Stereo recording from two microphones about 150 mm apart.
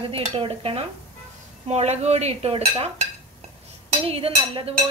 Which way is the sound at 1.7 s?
45° right (ahead or behind).